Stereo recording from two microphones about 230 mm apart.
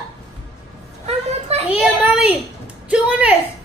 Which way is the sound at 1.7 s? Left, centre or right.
Centre.